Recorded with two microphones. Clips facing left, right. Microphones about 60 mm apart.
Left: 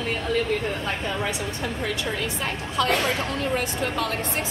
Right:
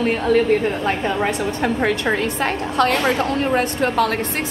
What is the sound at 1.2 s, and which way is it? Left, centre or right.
A woman's voice, right.